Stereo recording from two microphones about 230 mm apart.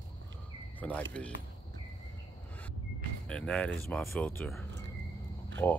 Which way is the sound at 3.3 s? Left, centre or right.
Centre.